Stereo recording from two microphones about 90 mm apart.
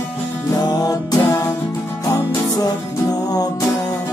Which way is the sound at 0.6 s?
45° left (ahead or behind).